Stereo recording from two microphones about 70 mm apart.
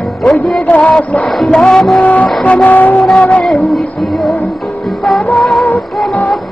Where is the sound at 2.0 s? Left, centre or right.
Left.